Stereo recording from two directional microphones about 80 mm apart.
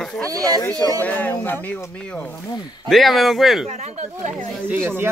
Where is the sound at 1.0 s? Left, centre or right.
Left.